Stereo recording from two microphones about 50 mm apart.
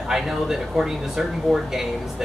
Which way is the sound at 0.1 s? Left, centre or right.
Centre.